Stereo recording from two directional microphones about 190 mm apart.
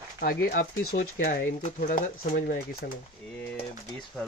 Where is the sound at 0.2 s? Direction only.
50° left (ahead or behind).